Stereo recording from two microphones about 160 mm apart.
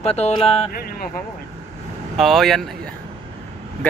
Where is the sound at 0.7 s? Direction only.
70° left (ahead or behind).